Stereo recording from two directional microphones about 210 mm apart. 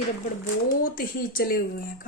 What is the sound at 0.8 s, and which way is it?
Speech, 45° left (ahead or behind).